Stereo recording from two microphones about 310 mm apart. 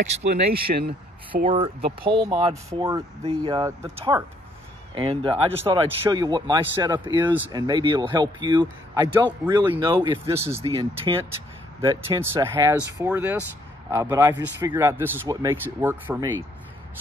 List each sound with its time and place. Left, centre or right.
0.2 s speech: right
1.5 s speech: centre
2.0 s speech: centre